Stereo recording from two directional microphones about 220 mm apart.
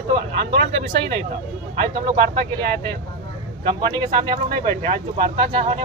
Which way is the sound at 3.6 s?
20° right (ahead or behind).